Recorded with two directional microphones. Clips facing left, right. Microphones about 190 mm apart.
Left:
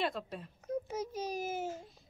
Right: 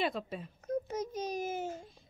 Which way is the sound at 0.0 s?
Centre (ahead or behind).